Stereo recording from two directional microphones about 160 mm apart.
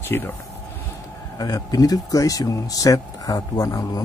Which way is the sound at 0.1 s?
15° left (ahead or behind).